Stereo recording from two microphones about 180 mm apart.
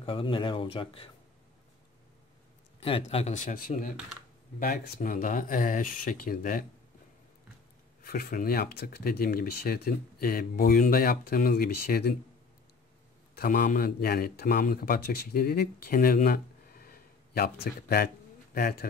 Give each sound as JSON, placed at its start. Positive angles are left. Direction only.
{"t": 0.0, "sound": "speech", "side_deg": 30}
{"t": 2.8, "sound": "a man's voice", "side_deg": 30}
{"t": 8.0, "sound": "speech", "side_deg": 55}
{"t": 13.3, "sound": "speech", "side_deg": 55}